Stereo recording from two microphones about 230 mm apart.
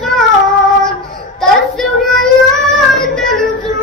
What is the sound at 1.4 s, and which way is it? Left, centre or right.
Child singing, centre.